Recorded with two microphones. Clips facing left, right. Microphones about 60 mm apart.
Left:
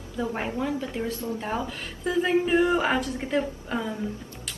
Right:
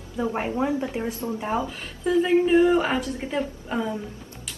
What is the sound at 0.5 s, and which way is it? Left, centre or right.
Speech, right.